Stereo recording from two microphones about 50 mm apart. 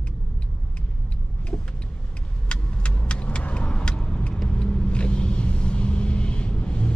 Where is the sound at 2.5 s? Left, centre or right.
Left.